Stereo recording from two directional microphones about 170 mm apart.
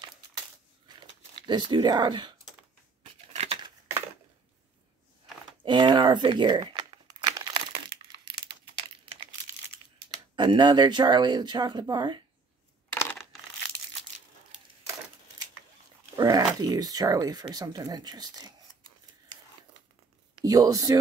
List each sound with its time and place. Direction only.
1.4 s speech: 25° right (ahead or behind)
3.3 s a sound: 35° right (ahead or behind)
5.7 s crumpling: 25° right (ahead or behind)
10.3 s speech: 25° right (ahead or behind)
16.2 s speech: 25° right (ahead or behind)
20.3 s speech: 20° right (ahead or behind)